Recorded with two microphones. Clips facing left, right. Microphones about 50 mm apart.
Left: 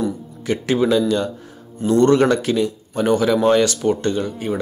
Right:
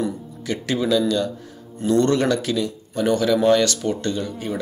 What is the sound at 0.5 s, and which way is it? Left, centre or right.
Speech, left.